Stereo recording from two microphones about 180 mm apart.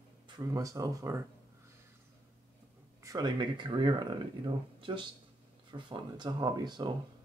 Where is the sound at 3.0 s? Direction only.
25° right (ahead or behind).